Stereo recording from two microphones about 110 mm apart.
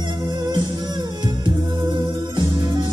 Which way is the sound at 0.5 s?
40° right (ahead or behind).